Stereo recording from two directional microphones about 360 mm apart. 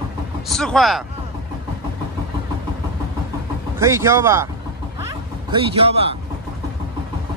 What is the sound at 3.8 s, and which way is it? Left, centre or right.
Speech, centre.